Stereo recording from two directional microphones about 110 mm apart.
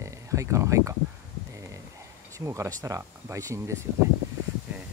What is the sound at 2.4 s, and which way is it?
Speech, 25° right (ahead or behind).